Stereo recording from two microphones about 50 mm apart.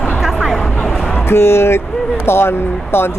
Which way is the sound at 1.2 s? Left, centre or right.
Left.